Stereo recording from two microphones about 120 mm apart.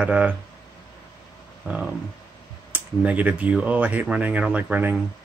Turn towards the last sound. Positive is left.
turn(degrees=-15)  # may be behind; listen again after turning